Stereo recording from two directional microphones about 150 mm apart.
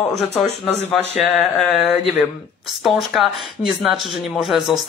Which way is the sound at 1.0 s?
45° left (ahead or behind).